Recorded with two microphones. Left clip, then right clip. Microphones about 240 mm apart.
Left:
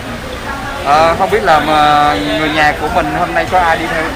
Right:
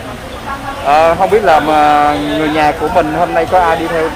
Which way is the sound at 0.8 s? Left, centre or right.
Right.